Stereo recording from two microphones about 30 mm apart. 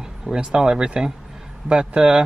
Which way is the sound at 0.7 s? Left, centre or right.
Right.